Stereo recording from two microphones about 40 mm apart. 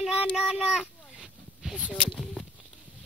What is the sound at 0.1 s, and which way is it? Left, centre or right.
Child singing, right.